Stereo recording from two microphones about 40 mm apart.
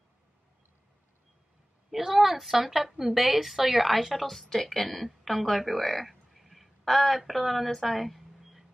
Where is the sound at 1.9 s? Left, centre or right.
Centre.